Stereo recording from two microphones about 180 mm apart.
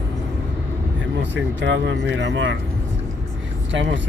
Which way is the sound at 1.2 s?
80° right.